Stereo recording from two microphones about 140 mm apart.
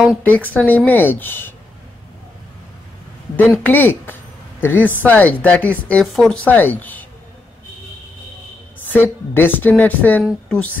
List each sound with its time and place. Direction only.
0.2 s speech: 10° left (ahead or behind)
3.3 s speech: 15° left (ahead or behind)
6.0 s speech: centre (ahead or behind)
6.4 s speech: 10° left (ahead or behind)
8.9 s speech: 15° left (ahead or behind)